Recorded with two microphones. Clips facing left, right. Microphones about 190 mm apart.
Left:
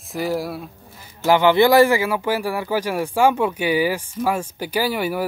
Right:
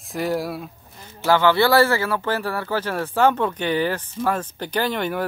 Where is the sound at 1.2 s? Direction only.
15° left (ahead or behind).